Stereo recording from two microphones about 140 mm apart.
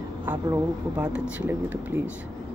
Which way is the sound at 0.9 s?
5° right (ahead or behind).